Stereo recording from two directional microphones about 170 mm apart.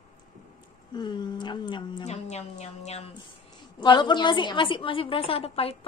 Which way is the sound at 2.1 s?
40° left (ahead or behind).